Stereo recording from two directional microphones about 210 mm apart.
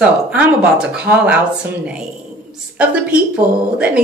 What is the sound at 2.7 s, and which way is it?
Speech, 5° right (ahead or behind).